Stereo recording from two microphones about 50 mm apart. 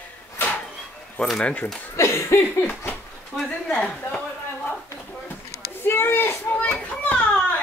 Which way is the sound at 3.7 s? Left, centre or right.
Left.